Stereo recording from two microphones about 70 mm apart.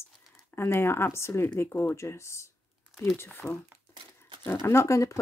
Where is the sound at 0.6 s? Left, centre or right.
Left.